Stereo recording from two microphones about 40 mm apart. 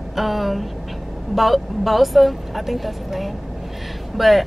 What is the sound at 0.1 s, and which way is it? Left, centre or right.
Speech, centre.